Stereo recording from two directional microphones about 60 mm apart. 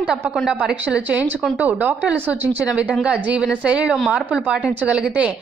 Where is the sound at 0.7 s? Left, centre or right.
Right.